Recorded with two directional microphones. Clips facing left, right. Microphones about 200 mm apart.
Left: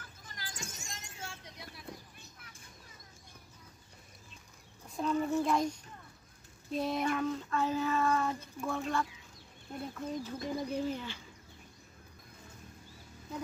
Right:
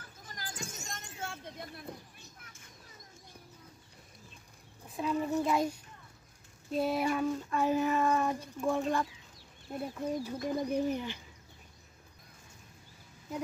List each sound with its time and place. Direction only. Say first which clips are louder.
0.3 s a sound: right 3 dB; 45° right (ahead or behind)
4.8 s a child's voice: left 1 dB; 5° right (ahead or behind)
6.7 s child singing: right 2 dB; 5° right (ahead or behind)